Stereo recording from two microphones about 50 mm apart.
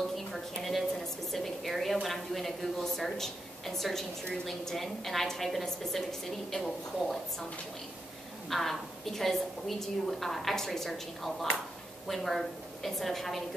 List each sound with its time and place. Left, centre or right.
0.3 s a sound: centre
1.3 s a woman's voice: centre
8.5 s a woman's voice: centre